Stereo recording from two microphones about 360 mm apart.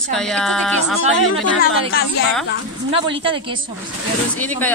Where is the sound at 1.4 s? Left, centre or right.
Left.